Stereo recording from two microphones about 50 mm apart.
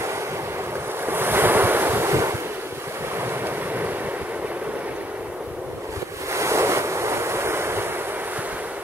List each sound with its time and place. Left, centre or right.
1.0 s waves: right
3.2 s waves: right
6.3 s waves: right